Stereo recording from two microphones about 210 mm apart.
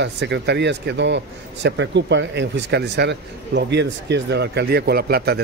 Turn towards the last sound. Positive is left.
turn(degrees=-50)  # may be behind; listen again after turning